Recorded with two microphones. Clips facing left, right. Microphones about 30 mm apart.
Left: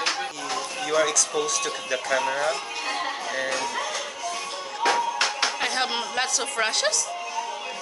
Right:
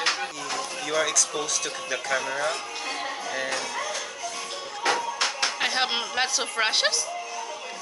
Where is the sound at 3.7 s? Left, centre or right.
Left.